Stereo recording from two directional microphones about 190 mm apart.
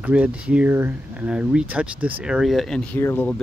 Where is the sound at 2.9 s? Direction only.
10° left (ahead or behind).